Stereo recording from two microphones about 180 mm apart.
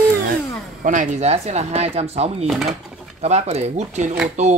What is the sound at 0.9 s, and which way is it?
Speech, 45° right (ahead or behind).